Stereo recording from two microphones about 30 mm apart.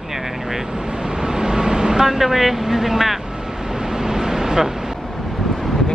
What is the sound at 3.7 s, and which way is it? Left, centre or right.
Vehicle, right.